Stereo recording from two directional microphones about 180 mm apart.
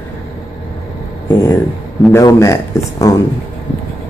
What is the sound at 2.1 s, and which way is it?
Speech, 15° left (ahead or behind).